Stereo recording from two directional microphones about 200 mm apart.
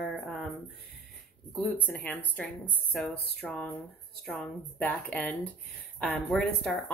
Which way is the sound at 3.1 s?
55° left (ahead or behind).